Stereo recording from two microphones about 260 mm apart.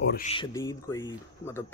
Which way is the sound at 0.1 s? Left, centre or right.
Left.